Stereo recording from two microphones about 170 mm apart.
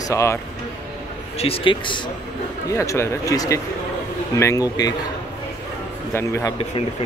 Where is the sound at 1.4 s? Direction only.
30° left (ahead or behind).